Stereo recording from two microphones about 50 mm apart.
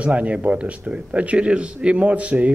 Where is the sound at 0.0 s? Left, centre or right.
Right.